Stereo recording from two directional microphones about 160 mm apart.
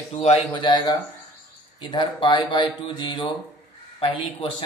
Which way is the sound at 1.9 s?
30° left (ahead or behind).